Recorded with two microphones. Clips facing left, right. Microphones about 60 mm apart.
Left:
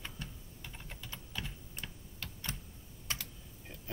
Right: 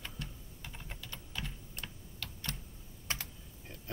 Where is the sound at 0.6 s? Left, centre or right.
Centre.